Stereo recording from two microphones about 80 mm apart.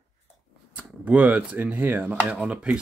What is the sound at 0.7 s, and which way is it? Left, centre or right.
Speech, centre.